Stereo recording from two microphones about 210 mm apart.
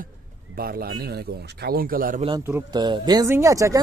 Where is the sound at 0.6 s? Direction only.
45° right (ahead or behind).